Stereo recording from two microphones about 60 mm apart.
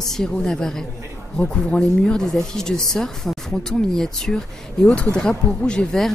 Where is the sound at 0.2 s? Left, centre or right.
Centre.